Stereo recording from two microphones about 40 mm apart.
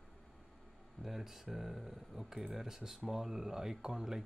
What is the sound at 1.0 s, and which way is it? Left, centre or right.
Speech, centre.